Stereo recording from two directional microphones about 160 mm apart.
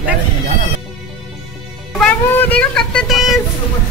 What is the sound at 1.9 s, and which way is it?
Speech, 10° left (ahead or behind).